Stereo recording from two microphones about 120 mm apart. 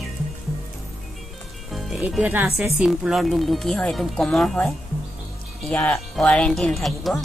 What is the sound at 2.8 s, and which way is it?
Speech, 5° right (ahead or behind).